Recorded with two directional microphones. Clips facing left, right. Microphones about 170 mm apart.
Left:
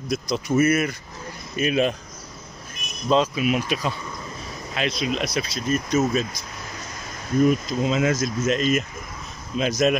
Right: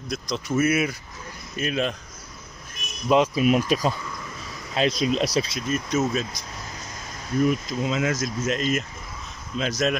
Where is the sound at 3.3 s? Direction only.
40° right (ahead or behind).